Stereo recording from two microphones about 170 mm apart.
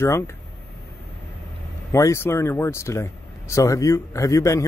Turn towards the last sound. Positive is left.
turn(degrees=20)  # may be behind; listen again after turning